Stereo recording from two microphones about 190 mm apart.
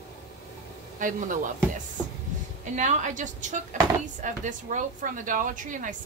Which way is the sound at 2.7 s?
40° right (ahead or behind).